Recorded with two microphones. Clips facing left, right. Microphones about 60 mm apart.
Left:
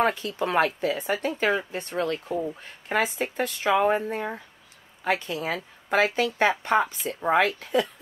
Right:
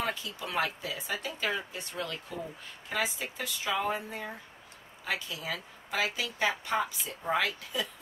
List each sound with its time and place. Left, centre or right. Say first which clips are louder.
0.0 s speech: left 10 dB; left